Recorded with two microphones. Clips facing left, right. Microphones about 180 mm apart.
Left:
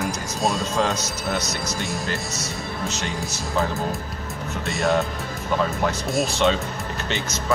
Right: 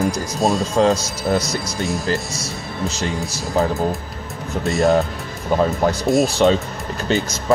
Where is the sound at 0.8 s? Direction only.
30° right (ahead or behind).